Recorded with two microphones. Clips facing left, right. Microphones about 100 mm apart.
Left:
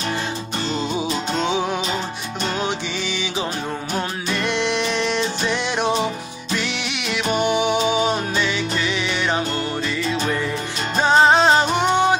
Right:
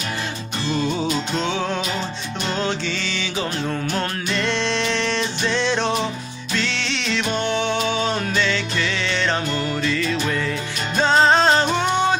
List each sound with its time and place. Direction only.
1.4 s music: 15° left (ahead or behind)
3.9 s music: 15° left (ahead or behind)
9.8 s music: 15° left (ahead or behind)